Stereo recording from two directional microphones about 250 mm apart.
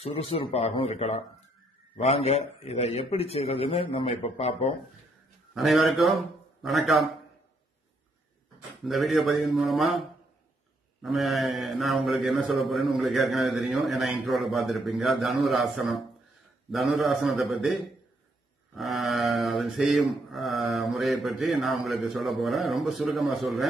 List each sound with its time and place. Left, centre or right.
0.0 s a man's voice: left
5.5 s a man's voice: centre
8.8 s a man's voice: centre
18.8 s mantra: centre